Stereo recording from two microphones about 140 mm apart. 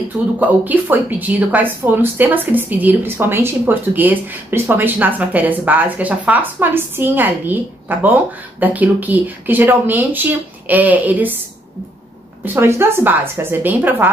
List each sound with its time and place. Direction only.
0.4 s speech: 10° right (ahead or behind)
12.5 s speech: 15° right (ahead or behind)